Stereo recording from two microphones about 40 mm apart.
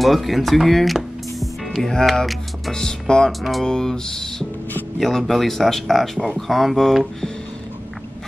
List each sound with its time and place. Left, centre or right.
0.0 s speech: centre
1.4 s music: centre
2.7 s speech: centre
3.3 s speech: centre
3.6 s speech: centre